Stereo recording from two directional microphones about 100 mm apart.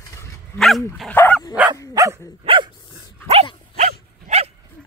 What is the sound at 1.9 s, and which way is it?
Dog, 30° right (ahead or behind).